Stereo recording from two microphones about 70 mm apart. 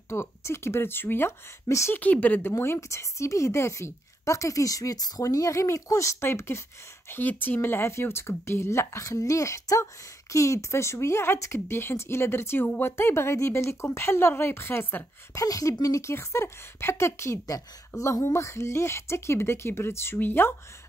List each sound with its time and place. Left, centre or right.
0.1 s speech: left
1.7 s speech: left
2.0 s speech: left
2.5 s a woman's voice: left
15.3 s a woman's voice: left